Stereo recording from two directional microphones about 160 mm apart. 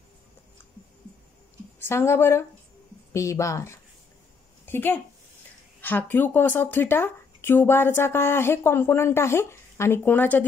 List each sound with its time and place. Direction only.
1.9 s speech: 15° left (ahead or behind)